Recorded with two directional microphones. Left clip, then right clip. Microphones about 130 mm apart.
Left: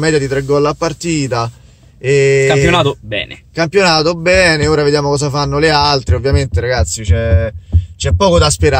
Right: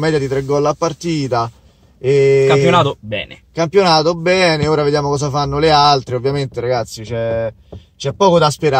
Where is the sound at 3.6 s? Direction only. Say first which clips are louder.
Left 1 dB; 30° left (ahead or behind).